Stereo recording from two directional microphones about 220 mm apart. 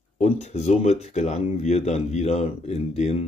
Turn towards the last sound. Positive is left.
turn(degrees=30)  # may be behind; listen again after turning